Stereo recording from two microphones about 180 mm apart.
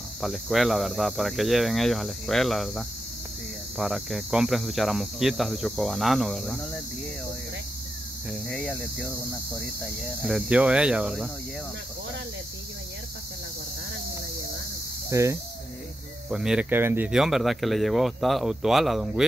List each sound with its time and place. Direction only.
0.2 s speech: centre (ahead or behind)
8.3 s speech: 5° left (ahead or behind)
10.2 s speech: 5° right (ahead or behind)
15.0 s speech: 15° right (ahead or behind)
16.3 s speech: 5° right (ahead or behind)